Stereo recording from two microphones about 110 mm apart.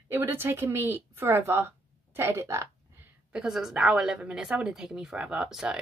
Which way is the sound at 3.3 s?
5° right (ahead or behind).